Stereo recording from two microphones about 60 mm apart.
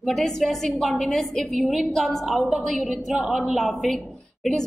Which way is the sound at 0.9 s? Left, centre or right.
Centre.